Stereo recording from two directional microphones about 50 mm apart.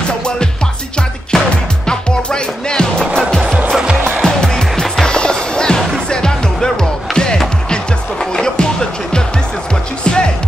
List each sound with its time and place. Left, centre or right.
1.3 s music: centre